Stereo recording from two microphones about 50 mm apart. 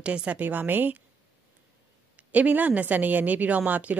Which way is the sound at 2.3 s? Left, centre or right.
Right.